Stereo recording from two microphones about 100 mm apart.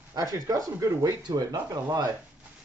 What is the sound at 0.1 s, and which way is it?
Speech, 35° right (ahead or behind).